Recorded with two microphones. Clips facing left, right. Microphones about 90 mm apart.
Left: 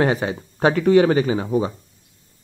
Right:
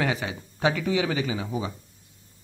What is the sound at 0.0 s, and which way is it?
Speech, 40° left (ahead or behind).